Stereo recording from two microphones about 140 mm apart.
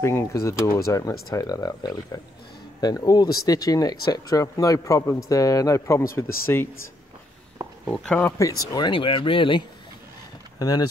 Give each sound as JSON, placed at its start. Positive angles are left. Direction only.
{"t": 0.0, "sound": "a man's voice", "side_deg": 20}
{"t": 7.8, "sound": "speech", "side_deg": 5}
{"t": 8.4, "sound": "speech", "side_deg": 25}
{"t": 10.6, "sound": "a man's voice", "side_deg": 25}